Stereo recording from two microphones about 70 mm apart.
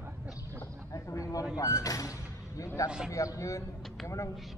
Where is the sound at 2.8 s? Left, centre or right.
Centre.